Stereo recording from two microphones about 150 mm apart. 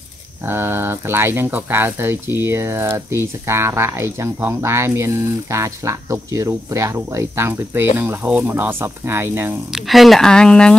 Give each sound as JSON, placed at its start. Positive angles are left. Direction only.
{"t": 0.5, "sound": "speech", "side_deg": -15}
{"t": 9.7, "sound": "speech", "side_deg": 0}